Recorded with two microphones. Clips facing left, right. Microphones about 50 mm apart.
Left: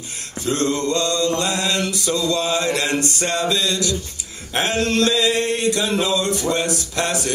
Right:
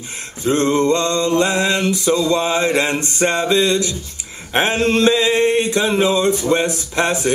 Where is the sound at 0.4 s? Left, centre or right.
Right.